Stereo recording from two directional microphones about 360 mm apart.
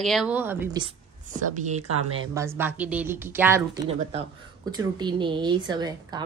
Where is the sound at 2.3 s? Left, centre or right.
Centre.